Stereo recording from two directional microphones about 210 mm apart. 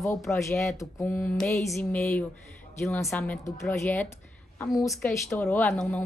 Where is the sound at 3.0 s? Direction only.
5° left (ahead or behind).